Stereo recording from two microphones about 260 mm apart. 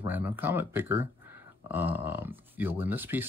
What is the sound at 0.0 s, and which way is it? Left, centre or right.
Speech, centre.